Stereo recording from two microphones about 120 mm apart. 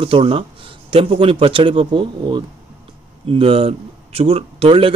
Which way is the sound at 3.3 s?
50° right (ahead or behind).